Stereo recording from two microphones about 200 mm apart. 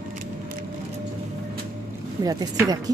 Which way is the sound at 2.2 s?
15° right (ahead or behind).